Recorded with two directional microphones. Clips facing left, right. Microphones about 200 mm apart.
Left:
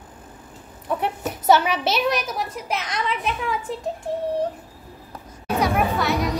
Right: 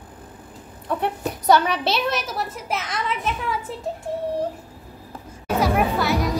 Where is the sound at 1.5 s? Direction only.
Centre (ahead or behind).